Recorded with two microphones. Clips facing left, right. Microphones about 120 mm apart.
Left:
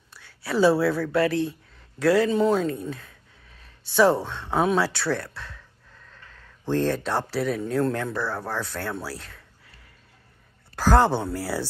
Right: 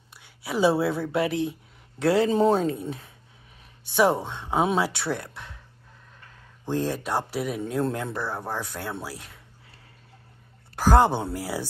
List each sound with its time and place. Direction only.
0.1 s speech: 15° right (ahead or behind)
2.7 s speech: 20° right (ahead or behind)
10.8 s speech: 20° right (ahead or behind)